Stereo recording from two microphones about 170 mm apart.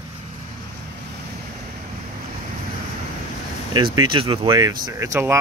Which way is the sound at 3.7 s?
25° right (ahead or behind).